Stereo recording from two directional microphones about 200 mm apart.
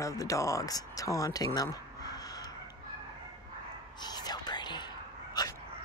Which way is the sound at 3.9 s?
20° left (ahead or behind).